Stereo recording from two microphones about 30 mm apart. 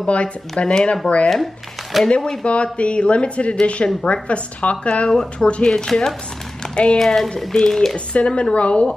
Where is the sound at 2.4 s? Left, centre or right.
Left.